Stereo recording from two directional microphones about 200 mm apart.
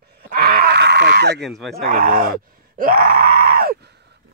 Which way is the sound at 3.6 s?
50° right (ahead or behind).